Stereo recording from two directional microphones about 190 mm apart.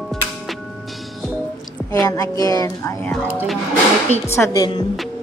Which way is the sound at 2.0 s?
20° left (ahead or behind).